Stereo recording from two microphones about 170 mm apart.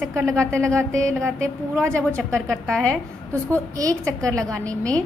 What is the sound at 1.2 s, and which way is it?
A woman's voice, 5° left (ahead or behind).